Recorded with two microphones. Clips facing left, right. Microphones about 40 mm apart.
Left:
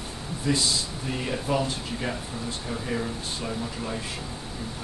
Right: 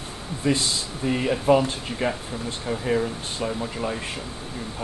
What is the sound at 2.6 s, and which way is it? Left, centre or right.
Speech, right.